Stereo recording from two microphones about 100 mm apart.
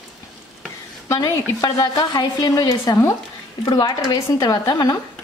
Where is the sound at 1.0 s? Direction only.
35° left (ahead or behind).